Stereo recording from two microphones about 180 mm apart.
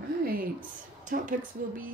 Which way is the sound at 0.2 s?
55° right (ahead or behind).